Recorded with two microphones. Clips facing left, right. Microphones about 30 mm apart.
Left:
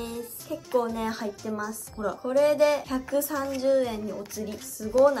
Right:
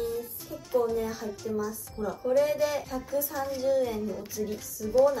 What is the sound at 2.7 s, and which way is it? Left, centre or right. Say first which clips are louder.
Speech: left 4 dB; left.